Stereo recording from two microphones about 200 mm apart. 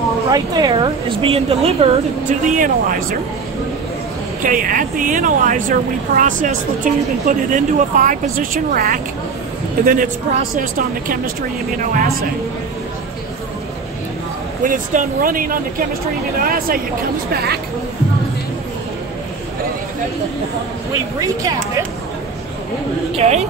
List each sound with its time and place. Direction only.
0.3 s a woman's voice: 20° right (ahead or behind); by 3.2 s 45° right (ahead or behind)
4.4 s speech: 45° right (ahead or behind)
14.6 s speech: 40° right (ahead or behind)
21.2 s speech: 15° right (ahead or behind)
23.1 s speech: 35° right (ahead or behind)